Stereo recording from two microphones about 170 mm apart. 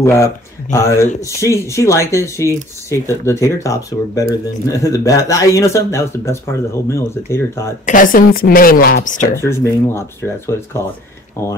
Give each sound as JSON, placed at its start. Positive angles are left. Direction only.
{"t": 0.0, "sound": "speech", "side_deg": 15}
{"t": 7.8, "sound": "speech", "side_deg": 50}
{"t": 9.4, "sound": "speech", "side_deg": 15}